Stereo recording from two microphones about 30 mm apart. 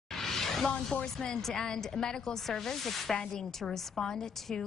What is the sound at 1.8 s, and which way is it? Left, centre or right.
Speech, left.